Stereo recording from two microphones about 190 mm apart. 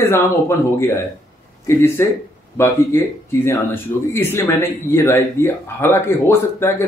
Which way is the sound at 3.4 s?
15° left (ahead or behind).